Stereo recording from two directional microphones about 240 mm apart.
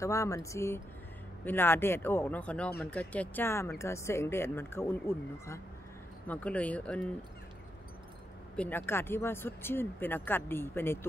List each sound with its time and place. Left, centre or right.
0.0 s speech: centre
8.5 s speech: centre